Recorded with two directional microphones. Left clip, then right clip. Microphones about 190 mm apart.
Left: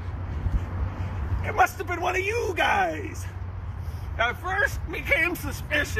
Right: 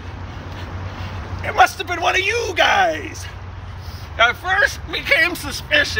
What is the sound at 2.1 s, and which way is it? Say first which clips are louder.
Speech: right 7 dB; 5° right (ahead or behind).